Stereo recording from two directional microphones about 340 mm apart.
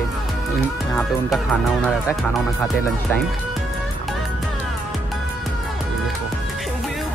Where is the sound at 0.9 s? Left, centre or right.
Centre.